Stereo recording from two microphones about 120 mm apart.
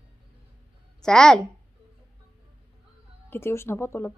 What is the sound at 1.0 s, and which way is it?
Speech, 5° left (ahead or behind).